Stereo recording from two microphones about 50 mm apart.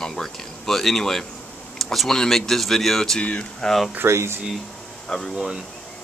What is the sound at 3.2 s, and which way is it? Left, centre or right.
Speech, left.